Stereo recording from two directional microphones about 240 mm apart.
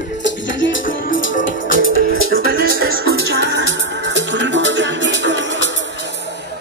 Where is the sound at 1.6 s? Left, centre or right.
Left.